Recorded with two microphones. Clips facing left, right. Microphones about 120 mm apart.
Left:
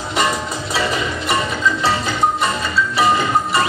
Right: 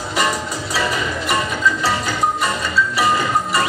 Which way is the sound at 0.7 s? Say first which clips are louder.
Left 1 dB; 25° left (ahead or behind).